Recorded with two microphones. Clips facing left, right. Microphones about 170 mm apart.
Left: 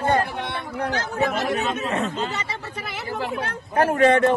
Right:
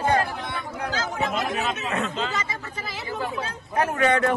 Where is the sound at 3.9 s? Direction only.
30° left (ahead or behind).